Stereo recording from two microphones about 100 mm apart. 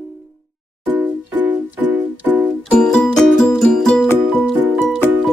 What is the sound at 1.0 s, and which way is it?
Music, 15° right (ahead or behind).